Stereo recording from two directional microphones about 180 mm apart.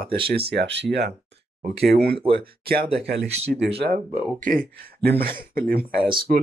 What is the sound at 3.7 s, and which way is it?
Speech, 55° right (ahead or behind).